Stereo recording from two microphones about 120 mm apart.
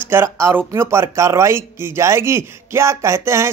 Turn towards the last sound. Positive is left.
turn(degrees=-25)  # may be behind; listen again after turning